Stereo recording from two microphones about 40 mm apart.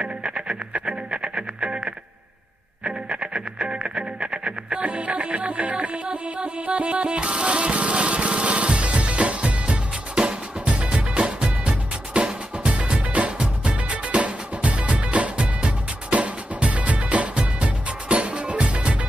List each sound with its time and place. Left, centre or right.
0.0 s music: right
2.8 s music: right